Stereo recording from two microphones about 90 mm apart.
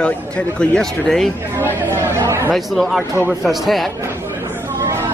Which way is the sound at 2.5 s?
Centre (ahead or behind).